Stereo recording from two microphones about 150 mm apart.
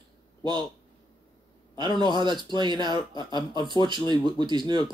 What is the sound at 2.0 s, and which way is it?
Speech, 30° right (ahead or behind).